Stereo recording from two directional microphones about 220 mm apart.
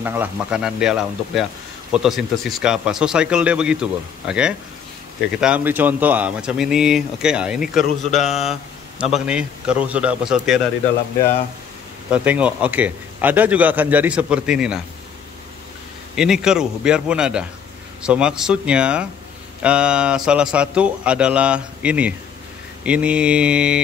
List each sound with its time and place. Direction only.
0.0 s speech: 10° right (ahead or behind)
8.1 s mantra: 30° left (ahead or behind)
8.5 s speech: centre (ahead or behind)
12.1 s a man's voice: 5° right (ahead or behind)
16.2 s speech: 5° right (ahead or behind)